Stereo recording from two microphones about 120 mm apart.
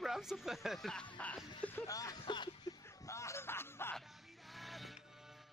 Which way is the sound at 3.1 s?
25° left (ahead or behind).